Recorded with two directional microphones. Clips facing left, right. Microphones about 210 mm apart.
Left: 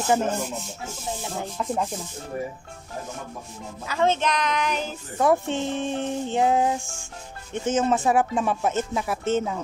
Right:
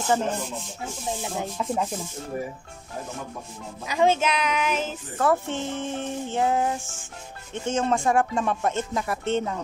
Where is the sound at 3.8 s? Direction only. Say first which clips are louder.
Right 1 dB; 15° right (ahead or behind).